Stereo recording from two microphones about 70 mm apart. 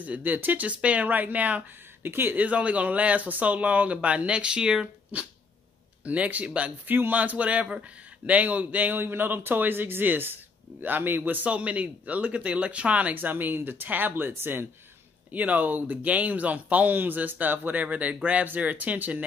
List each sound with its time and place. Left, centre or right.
0.0 s speech: right
2.0 s speech: right